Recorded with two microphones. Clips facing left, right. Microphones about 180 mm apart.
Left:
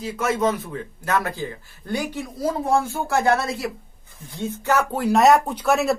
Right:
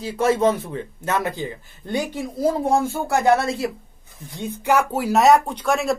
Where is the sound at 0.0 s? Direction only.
30° right (ahead or behind).